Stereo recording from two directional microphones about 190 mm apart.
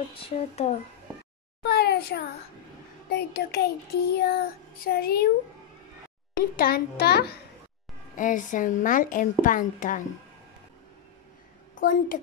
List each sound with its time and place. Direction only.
0.1 s speech: 30° left (ahead or behind)
1.6 s a child's voice: 55° left (ahead or behind)
3.1 s child singing: 60° left (ahead or behind)
6.3 s a woman's voice: 50° left (ahead or behind)
8.2 s a woman's voice: 45° left (ahead or behind)
11.7 s a woman's voice: 45° left (ahead or behind)